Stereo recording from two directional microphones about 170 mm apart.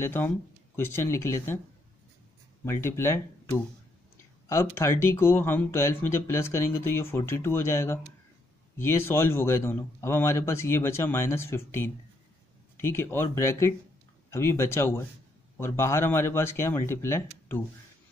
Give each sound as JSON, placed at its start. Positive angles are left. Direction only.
{"t": 0.0, "sound": "speech", "side_deg": 15}
{"t": 2.6, "sound": "speech", "side_deg": 15}